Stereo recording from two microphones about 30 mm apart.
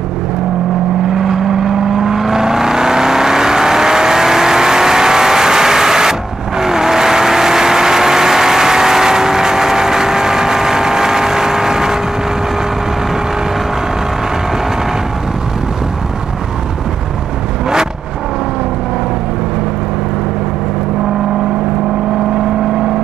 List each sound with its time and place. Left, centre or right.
1.1 s vehicle: centre